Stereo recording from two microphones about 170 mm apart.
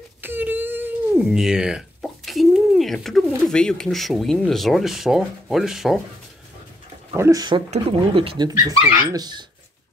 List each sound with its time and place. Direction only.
0.2 s speech: 10° right (ahead or behind)
7.2 s speech: 20° right (ahead or behind)